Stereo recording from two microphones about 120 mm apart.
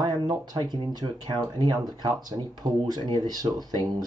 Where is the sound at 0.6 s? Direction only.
35° right (ahead or behind).